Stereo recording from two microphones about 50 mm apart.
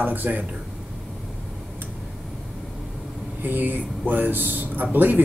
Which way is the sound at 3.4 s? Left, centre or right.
Right.